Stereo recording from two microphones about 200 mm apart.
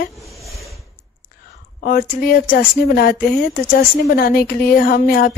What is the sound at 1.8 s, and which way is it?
A woman's voice, 45° left (ahead or behind).